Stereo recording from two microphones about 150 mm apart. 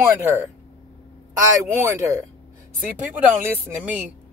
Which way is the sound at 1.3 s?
20° right (ahead or behind).